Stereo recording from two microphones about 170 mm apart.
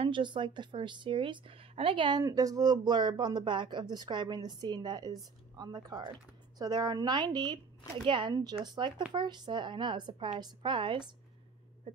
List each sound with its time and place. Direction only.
0.0 s a woman's voice: 30° right (ahead or behind)